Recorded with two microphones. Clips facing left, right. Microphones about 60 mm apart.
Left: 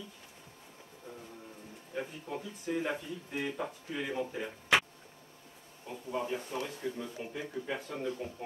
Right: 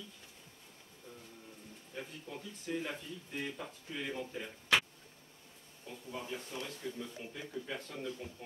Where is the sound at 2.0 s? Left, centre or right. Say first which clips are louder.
Left 7 dB; left.